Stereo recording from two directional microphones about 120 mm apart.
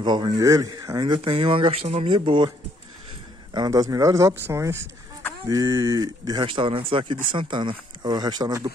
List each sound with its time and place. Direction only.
0.0 s speech: 35° right (ahead or behind); by 2.1 s 55° right (ahead or behind)
2.1 s speech: 40° right (ahead or behind)
3.5 s speech: 35° right (ahead or behind)
6.4 s speech: 45° right (ahead or behind)